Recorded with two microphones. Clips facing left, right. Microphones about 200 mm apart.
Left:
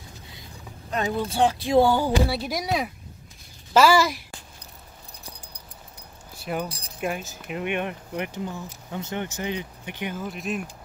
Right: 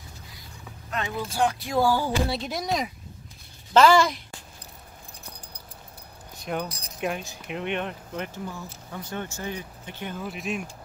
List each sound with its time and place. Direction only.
0.8 s speech: 35° left (ahead or behind)
2.2 s speech: 5° left (ahead or behind)
6.3 s keys jangling: 5° left (ahead or behind)
7.0 s speech: centre (ahead or behind)
10.1 s speech: centre (ahead or behind)